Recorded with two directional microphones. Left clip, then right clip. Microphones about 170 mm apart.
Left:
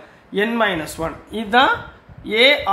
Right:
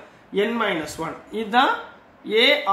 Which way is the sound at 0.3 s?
45° left (ahead or behind).